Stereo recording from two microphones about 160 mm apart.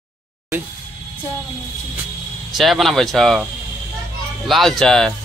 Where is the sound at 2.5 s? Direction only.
Centre (ahead or behind).